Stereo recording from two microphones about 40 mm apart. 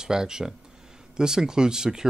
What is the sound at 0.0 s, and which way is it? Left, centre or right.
Speech, centre.